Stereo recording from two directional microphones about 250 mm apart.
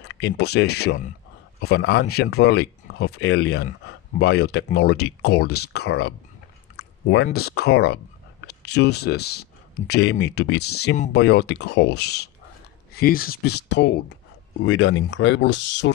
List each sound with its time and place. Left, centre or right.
0.0 s speech: left
6.8 s a sound: left
7.2 s speech: left